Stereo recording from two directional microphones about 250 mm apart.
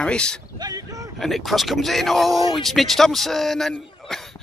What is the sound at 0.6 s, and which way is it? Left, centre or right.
Vehicle, centre.